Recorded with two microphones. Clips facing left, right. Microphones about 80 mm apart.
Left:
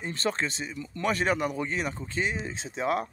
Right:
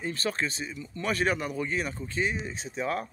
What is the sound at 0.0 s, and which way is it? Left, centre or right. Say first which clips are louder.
Speech: left 1 dB; left.